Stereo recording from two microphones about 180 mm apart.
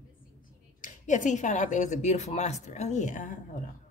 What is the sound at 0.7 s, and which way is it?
Speech, 45° left (ahead or behind).